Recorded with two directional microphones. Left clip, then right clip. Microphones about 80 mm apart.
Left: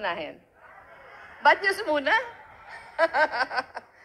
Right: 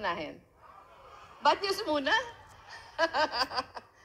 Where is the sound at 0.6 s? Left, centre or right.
Right.